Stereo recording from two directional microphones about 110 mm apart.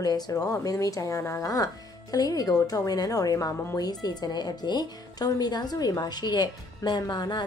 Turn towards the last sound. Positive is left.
turn(degrees=40)  # may be behind; listen again after turning